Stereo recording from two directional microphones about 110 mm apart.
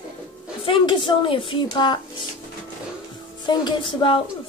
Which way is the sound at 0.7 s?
45° left (ahead or behind).